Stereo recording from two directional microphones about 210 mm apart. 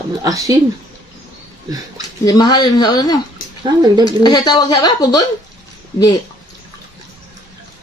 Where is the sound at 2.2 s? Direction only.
20° left (ahead or behind).